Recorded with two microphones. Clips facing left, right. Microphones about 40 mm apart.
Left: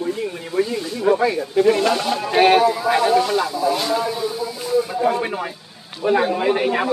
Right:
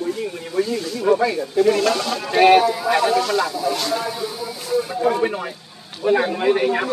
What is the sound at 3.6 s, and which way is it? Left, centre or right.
Speech, centre.